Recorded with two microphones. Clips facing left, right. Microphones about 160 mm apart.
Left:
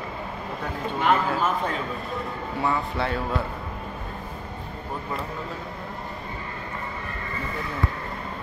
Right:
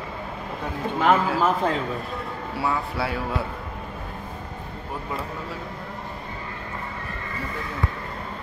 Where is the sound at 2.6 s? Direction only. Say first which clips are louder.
Even; 5° right (ahead or behind).